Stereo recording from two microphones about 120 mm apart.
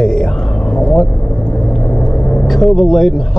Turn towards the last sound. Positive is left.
turn(degrees=0)  # may be behind; listen again after turning